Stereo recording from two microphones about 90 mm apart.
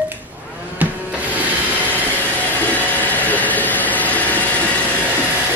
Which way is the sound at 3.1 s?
20° left (ahead or behind).